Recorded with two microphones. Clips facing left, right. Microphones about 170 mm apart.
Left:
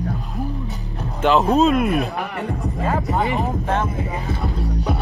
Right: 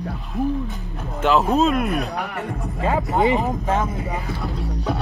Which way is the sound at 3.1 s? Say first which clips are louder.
Right 6 dB; 20° right (ahead or behind).